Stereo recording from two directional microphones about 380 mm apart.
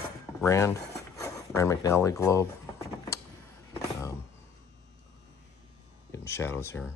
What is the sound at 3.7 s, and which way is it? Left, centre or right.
Music, centre.